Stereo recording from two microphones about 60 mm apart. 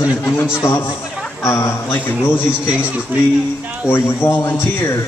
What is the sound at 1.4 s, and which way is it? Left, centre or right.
Speech, left.